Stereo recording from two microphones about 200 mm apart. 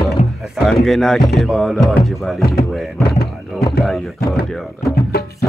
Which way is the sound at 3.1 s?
50° left (ahead or behind).